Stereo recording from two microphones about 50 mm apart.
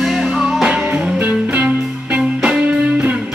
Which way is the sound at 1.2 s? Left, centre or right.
Right.